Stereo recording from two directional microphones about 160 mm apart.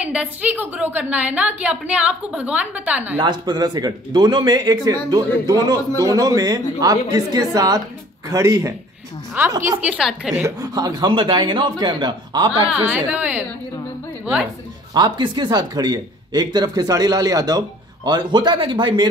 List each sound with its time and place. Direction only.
0.0 s a woman's voice: 10° right (ahead or behind)
3.2 s speech: 25° right (ahead or behind)
9.7 s a woman's voice: 10° right (ahead or behind)
10.4 s speech: 25° right (ahead or behind)
12.7 s a woman's voice: 10° right (ahead or behind)
15.0 s speech: 30° right (ahead or behind)